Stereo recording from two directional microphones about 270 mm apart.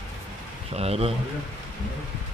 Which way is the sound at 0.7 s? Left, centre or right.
Right.